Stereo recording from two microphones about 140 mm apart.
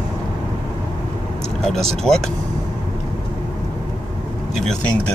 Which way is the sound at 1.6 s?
Centre (ahead or behind).